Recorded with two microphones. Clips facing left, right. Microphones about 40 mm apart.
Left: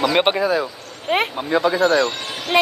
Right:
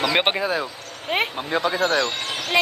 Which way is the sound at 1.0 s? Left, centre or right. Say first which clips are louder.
Left 3 dB; left.